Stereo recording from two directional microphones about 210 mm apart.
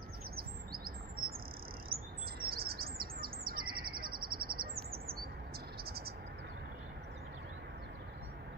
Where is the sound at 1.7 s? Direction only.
45° right (ahead or behind).